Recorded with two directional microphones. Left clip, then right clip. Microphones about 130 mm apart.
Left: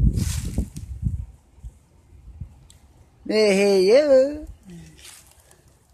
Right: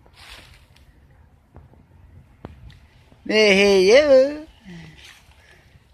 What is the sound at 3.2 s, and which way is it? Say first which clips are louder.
Speech: right 3 dB; 15° left (ahead or behind).